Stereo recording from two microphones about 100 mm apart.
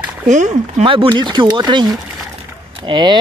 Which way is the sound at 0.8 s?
55° right (ahead or behind).